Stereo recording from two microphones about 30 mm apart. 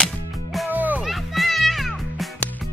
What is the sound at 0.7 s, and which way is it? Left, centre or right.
Music, right.